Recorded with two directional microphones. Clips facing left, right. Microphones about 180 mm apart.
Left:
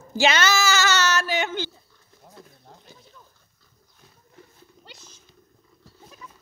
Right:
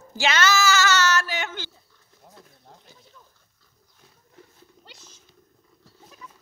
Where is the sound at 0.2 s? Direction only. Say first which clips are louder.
Left 1 dB; 20° left (ahead or behind).